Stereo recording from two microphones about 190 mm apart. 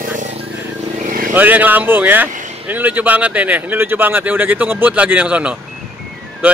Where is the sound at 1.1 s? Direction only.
45° right (ahead or behind).